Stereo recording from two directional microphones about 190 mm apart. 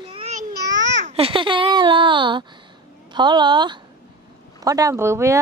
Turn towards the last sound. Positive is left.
turn(degrees=-15)  # may be behind; listen again after turning